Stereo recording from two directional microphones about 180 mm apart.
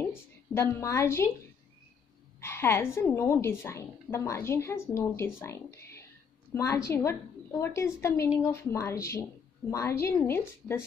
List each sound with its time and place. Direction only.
0.6 s a woman's voice: 15° left (ahead or behind)
2.4 s a woman's voice: 15° left (ahead or behind)